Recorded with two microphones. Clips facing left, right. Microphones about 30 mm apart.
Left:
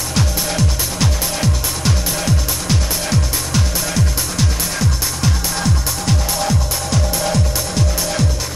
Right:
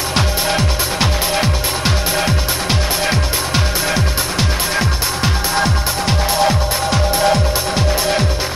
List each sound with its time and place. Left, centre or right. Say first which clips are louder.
0.1 s music: right 3 dB; right